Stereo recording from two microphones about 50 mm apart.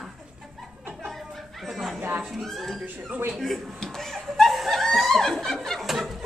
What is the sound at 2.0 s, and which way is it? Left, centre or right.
Speech, right.